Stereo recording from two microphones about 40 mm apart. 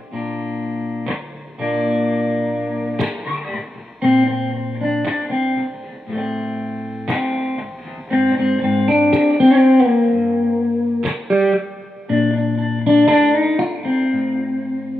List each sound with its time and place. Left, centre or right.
0.2 s music: centre
1.0 s music: centre
9.9 s music: centre
11.0 s music: centre